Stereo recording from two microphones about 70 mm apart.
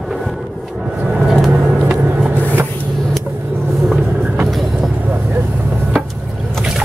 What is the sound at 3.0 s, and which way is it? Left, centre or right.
Vehicle, centre.